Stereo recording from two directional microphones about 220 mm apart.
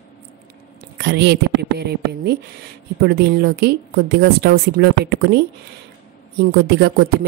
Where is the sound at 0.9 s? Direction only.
50° right (ahead or behind).